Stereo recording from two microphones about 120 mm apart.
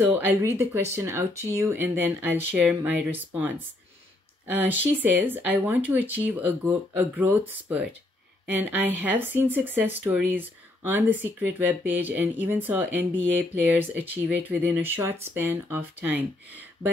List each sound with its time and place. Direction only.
0.0 s speech: 15° right (ahead or behind)
8.5 s speech: 15° right (ahead or behind)